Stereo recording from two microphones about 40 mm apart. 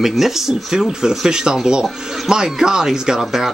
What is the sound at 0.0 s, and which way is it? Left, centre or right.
Speech, centre.